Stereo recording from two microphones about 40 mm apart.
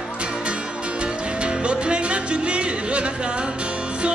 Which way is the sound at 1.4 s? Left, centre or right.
Right.